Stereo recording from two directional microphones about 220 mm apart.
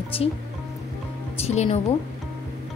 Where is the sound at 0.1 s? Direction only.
25° left (ahead or behind).